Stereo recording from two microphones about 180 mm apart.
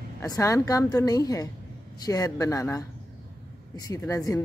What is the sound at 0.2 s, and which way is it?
A woman's voice, 20° left (ahead or behind).